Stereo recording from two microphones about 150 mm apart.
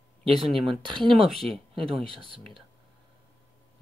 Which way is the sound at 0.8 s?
30° right (ahead or behind).